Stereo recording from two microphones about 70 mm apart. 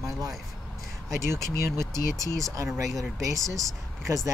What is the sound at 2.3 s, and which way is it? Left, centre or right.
Speech, right.